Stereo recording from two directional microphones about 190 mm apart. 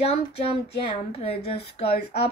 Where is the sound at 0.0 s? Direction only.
30° left (ahead or behind).